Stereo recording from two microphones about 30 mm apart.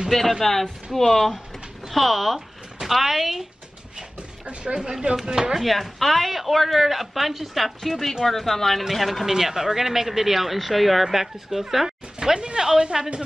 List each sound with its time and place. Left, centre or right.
0.4 s speech: centre
4.7 s speech: right
5.6 s speech: centre
8.9 s speech: centre
9.3 s speech: centre
11.1 s speech: centre
12.2 s speech: right